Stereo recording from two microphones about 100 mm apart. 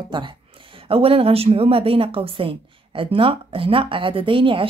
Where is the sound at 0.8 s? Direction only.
70° right (ahead or behind).